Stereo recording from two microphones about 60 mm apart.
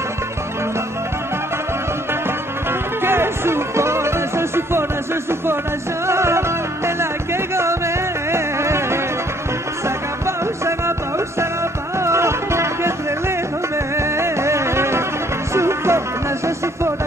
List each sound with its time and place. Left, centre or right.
3.0 s music: right
6.0 s music: right
7.5 s music: right
13.9 s music: right